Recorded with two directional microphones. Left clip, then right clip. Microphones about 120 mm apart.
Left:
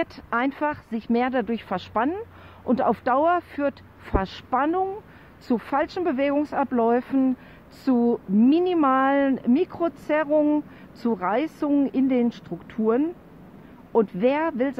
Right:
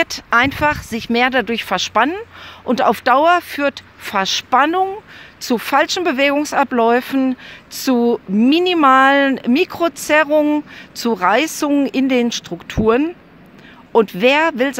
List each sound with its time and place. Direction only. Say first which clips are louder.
0.0 s speech: right 11 dB; 15° right (ahead or behind)